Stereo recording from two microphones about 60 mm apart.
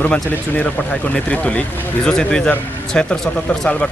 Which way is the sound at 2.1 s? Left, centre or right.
Centre.